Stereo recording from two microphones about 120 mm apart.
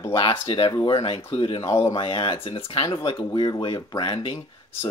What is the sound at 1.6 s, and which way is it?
Speech, 30° left (ahead or behind).